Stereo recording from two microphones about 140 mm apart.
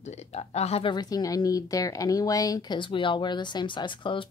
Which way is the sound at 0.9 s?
25° left (ahead or behind).